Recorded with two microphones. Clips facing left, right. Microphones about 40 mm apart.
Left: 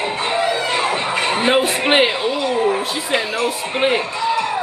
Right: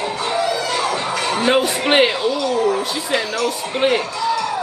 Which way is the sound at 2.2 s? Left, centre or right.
Left.